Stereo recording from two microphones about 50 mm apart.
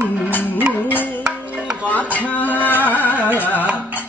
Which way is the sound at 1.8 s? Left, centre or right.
Left.